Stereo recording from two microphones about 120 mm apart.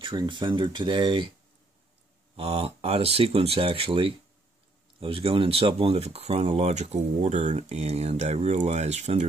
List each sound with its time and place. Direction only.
0.2 s speech: 40° right (ahead or behind)
2.3 s speech: 55° right (ahead or behind)